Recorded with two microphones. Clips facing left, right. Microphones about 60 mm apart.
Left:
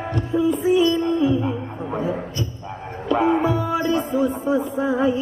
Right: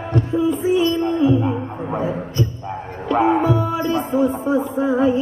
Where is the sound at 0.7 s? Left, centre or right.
Right.